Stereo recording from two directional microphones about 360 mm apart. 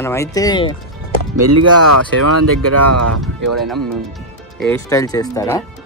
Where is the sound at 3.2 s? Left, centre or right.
Centre.